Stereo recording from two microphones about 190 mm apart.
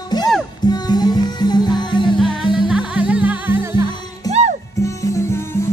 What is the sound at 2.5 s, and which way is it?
Music, 5° right (ahead or behind).